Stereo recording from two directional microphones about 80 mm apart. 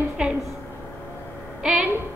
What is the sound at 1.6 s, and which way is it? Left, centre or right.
Speech, centre.